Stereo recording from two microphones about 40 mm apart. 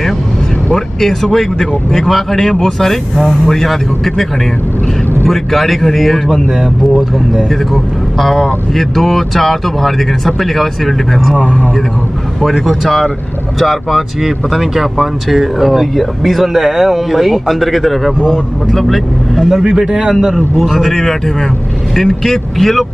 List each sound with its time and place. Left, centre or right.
0.7 s speech: centre
7.7 s speech: centre
11.3 s speech: left
12.4 s speech: centre
16.5 s speech: centre
19.6 s speech: centre
20.5 s speech: centre